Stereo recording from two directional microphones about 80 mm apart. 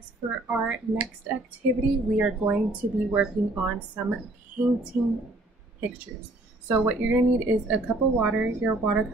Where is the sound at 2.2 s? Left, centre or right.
Centre.